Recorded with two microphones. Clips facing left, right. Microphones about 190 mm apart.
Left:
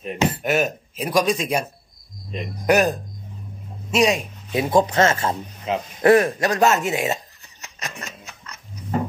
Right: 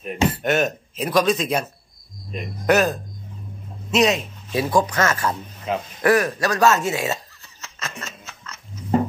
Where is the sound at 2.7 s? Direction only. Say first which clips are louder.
Even; 15° left (ahead or behind).